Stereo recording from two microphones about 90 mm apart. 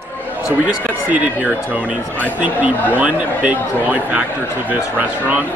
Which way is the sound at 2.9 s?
20° right (ahead or behind).